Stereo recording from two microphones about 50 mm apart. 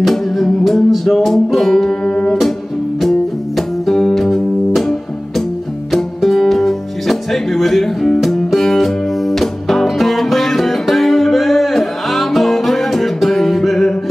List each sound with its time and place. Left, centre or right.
0.0 s music: centre
2.0 s music: left
3.0 s music: centre